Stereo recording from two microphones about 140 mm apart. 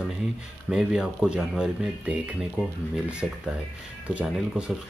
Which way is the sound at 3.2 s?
5° left (ahead or behind).